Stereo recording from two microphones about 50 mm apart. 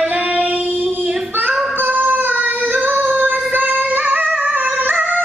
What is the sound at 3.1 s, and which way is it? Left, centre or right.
Music, right.